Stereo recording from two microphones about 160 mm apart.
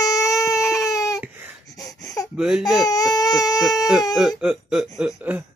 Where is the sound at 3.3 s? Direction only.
Centre (ahead or behind).